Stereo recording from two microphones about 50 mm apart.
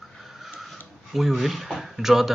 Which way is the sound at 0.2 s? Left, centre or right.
Centre.